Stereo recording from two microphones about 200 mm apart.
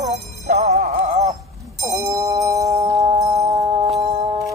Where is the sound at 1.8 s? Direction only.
15° right (ahead or behind).